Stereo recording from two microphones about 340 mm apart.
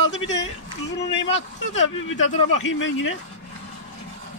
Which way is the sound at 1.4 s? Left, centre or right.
Left.